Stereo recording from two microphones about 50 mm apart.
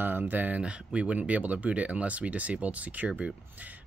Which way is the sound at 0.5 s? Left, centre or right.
Right.